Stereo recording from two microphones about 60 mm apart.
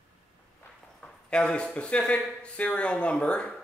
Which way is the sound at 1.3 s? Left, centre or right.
Centre.